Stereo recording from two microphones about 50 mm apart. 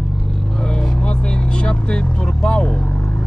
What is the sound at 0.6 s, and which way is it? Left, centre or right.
Vehicle, centre.